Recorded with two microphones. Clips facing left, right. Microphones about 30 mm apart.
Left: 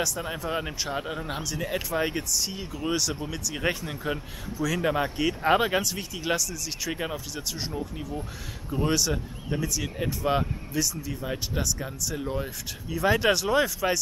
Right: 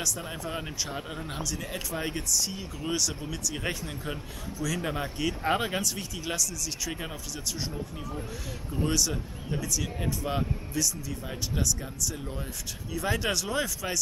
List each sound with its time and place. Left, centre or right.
0.0 s speech: centre